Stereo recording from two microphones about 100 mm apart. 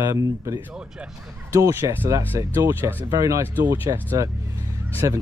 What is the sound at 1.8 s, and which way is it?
Speech, 50° right (ahead or behind).